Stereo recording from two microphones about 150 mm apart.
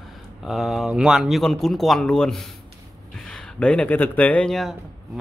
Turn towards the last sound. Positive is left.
turn(degrees=0)  # may be behind; listen again after turning